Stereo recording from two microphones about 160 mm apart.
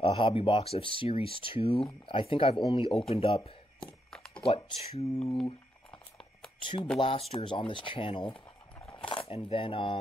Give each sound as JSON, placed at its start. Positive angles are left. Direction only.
{"t": 0.0, "sound": "speech", "side_deg": 35}
{"t": 6.6, "sound": "speech", "side_deg": 30}